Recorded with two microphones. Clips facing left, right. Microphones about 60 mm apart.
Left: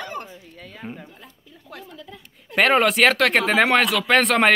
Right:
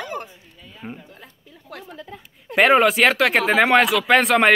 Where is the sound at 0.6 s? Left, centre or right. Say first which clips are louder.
Left 2 dB; left.